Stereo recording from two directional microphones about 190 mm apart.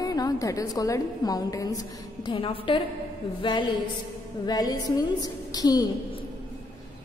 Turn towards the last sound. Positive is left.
turn(degrees=20)  # may be behind; listen again after turning